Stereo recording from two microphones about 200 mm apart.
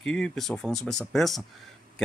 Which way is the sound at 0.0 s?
5° left (ahead or behind).